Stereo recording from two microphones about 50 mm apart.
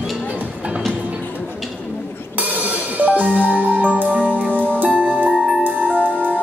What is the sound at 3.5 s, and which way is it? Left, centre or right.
Music, right.